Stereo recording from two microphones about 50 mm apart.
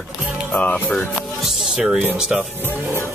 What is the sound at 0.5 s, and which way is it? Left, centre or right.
Music, left.